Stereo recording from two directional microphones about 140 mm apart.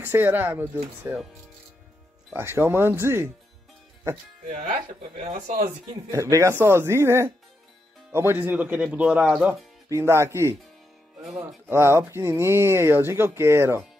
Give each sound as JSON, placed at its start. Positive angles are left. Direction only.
{"t": 0.0, "sound": "speech", "side_deg": -15}
{"t": 2.3, "sound": "speech", "side_deg": -15}
{"t": 4.5, "sound": "speech", "side_deg": -60}
{"t": 6.1, "sound": "speech", "side_deg": -25}
{"t": 9.8, "sound": "speech", "side_deg": -20}